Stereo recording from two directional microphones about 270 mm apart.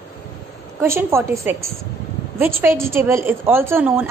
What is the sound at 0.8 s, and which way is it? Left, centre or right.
A woman's voice, centre.